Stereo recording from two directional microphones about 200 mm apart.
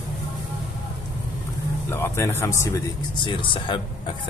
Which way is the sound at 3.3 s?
25° left (ahead or behind).